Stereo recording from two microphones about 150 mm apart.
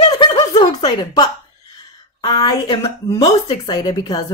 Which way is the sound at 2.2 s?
30° left (ahead or behind).